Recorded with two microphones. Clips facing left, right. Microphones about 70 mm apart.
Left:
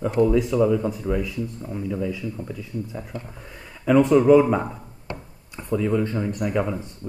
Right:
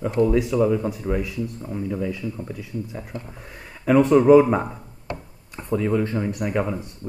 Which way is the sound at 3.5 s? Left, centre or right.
Right.